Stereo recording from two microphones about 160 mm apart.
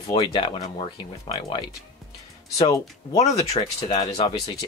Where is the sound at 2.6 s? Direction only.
25° left (ahead or behind).